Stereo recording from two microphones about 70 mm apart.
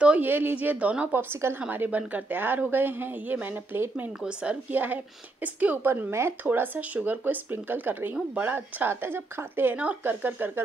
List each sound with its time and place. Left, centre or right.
0.2 s speech: right
1.3 s speech: right
1.7 s speech: right
4.2 s a woman's voice: centre
4.6 s speech: right